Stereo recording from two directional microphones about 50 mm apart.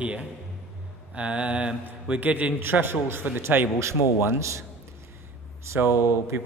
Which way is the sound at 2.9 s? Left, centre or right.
Right.